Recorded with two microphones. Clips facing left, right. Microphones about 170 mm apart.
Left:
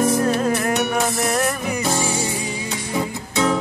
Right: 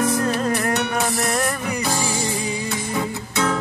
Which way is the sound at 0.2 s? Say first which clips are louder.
Left 2 dB; 5° left (ahead or behind).